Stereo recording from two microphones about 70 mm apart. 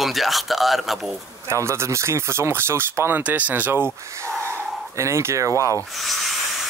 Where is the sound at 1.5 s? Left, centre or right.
Right.